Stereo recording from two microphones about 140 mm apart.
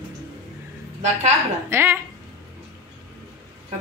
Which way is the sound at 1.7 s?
15° right (ahead or behind).